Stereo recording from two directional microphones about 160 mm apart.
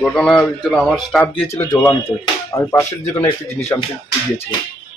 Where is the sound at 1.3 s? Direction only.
35° left (ahead or behind).